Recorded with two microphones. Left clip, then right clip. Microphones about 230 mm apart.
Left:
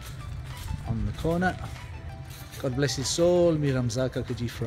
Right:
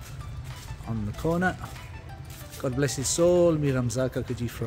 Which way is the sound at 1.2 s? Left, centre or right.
Centre.